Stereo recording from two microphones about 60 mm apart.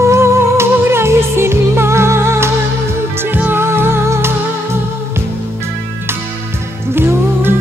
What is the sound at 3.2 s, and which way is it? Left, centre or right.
Music, right.